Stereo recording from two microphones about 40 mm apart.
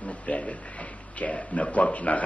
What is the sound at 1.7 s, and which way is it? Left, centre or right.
Speech, left.